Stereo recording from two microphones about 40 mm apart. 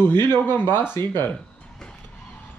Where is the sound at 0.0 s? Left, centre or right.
Left.